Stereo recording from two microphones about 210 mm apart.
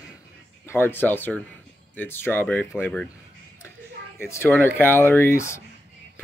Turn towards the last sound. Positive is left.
turn(degrees=15)  # may be behind; listen again after turning